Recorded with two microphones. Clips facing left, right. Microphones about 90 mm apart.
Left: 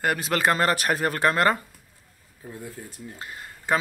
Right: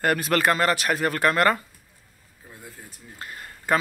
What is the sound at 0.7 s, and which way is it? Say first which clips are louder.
Speech: even; 35° left (ahead or behind).